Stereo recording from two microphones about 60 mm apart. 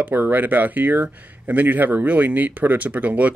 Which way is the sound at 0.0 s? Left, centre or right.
Right.